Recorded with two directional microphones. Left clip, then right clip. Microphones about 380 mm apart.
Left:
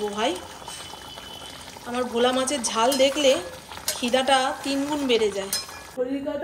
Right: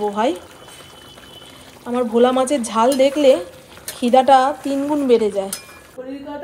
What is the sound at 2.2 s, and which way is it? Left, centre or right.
Speech, centre.